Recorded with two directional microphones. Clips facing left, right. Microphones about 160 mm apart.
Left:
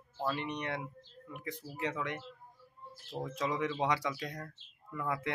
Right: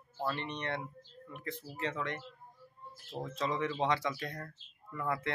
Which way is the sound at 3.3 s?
15° left (ahead or behind).